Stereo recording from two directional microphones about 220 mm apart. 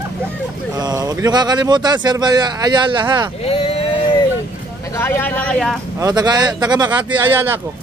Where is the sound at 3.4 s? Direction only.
25° left (ahead or behind).